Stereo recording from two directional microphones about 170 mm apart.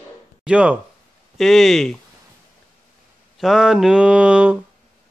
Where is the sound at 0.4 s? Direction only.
5° right (ahead or behind).